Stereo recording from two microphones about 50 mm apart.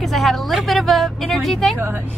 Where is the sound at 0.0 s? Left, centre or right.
Centre.